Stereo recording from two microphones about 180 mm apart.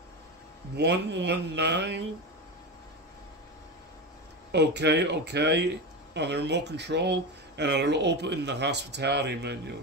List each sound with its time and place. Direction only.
0.7 s speech: 75° right (ahead or behind)
4.5 s speech: 70° right (ahead or behind)